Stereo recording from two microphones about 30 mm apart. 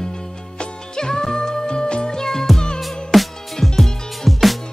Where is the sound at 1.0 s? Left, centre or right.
Left.